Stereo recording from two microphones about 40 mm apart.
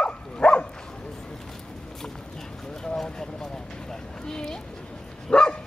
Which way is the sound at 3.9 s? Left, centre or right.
Centre.